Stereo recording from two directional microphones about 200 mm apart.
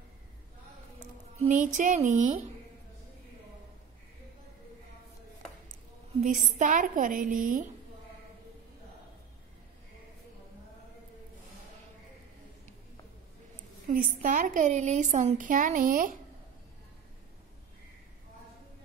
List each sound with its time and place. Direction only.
1.4 s a woman's voice: 40° right (ahead or behind)
6.2 s a woman's voice: 40° right (ahead or behind)
13.8 s a woman's voice: 40° right (ahead or behind)